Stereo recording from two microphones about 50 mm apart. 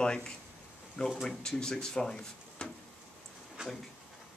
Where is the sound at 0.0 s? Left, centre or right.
Centre.